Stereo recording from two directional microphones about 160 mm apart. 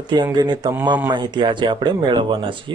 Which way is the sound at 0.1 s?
25° right (ahead or behind).